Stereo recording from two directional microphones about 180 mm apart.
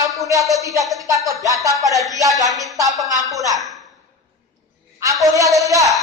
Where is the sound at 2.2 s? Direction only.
20° right (ahead or behind).